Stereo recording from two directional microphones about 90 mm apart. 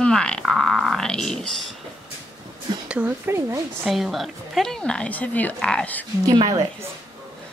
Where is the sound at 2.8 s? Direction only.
15° right (ahead or behind).